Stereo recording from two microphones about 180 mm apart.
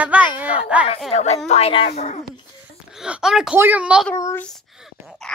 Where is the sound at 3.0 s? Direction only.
5° right (ahead or behind).